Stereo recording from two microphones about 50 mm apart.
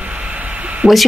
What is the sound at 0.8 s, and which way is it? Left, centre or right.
Speech, right.